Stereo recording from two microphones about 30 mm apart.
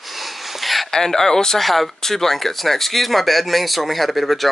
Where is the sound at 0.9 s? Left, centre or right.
Centre.